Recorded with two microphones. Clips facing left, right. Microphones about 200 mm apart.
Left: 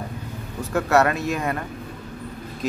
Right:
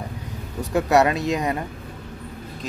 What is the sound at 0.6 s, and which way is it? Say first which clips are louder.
Speech: right 1 dB; 15° right (ahead or behind).